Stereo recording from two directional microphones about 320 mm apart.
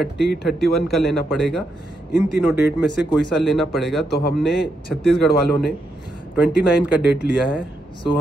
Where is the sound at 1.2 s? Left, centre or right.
Centre.